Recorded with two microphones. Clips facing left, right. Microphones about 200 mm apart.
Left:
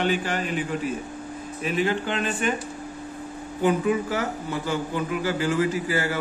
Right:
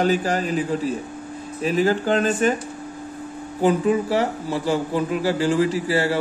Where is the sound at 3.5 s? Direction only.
35° right (ahead or behind).